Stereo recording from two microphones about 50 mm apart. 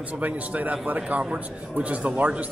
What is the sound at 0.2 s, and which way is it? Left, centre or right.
A man's voice, right.